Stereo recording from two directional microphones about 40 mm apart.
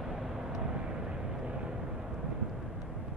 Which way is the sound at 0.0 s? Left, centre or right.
Centre.